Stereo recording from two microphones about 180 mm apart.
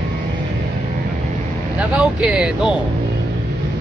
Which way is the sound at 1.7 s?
5° right (ahead or behind).